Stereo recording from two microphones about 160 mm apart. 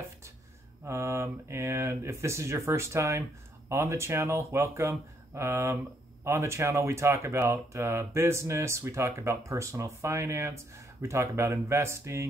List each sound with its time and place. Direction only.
0.8 s speech: 15° right (ahead or behind)